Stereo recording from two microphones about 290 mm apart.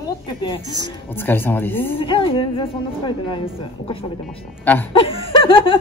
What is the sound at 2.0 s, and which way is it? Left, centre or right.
Speech, centre.